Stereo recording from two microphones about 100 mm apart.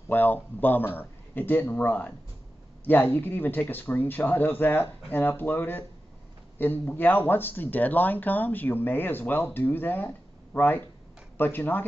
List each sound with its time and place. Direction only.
0.1 s speech: 20° left (ahead or behind)